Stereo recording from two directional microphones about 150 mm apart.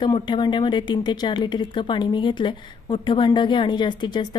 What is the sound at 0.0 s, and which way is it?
Speech, 30° left (ahead or behind).